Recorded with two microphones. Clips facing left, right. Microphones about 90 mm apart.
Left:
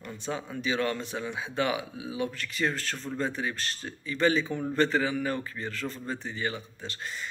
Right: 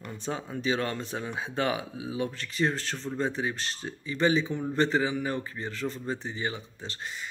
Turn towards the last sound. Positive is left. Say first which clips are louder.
# even
turn(degrees=-25)  # may be behind; listen again after turning